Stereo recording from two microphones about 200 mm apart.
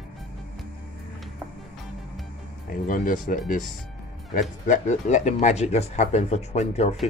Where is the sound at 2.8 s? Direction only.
40° left (ahead or behind).